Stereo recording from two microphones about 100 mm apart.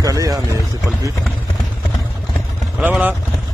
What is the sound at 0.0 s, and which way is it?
Boat, 35° right (ahead or behind).